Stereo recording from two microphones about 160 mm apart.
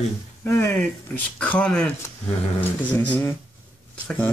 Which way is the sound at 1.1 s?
10° left (ahead or behind).